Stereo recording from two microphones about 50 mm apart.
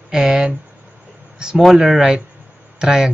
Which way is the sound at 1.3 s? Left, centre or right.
Centre.